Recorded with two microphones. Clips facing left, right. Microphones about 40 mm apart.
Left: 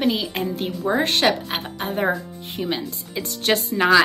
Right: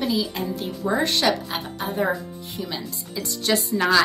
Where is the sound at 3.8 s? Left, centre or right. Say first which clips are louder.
Left 4 dB; centre.